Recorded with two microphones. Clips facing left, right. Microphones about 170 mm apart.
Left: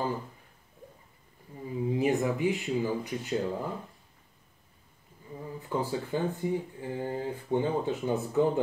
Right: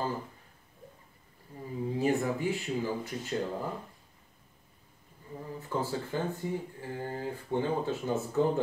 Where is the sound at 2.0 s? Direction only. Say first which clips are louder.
Left 1 dB; 15° left (ahead or behind).